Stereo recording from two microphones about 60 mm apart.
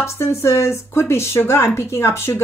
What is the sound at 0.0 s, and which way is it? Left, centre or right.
A woman's voice, left.